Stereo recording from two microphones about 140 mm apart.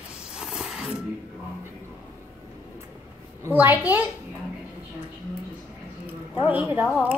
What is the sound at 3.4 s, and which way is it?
Speech, 15° right (ahead or behind).